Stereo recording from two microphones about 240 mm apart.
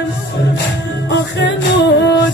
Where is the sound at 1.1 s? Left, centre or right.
Left.